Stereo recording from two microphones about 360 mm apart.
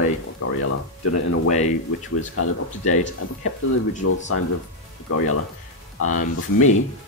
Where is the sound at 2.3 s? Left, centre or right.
Left.